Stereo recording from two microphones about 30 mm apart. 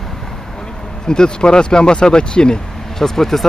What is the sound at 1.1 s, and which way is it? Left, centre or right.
Speech, left.